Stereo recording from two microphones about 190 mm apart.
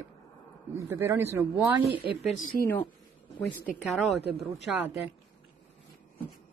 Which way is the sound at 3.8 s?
Centre (ahead or behind).